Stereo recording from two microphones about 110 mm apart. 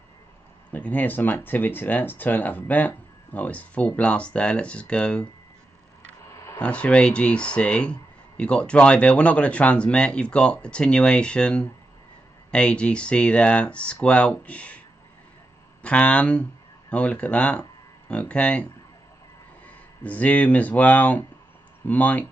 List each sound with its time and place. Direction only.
0.7 s speech: 15° left (ahead or behind)
6.2 s a sound: 30° left (ahead or behind)
6.6 s speech: 10° left (ahead or behind)
15.8 s speech: 10° left (ahead or behind)
20.0 s speech: 15° left (ahead or behind)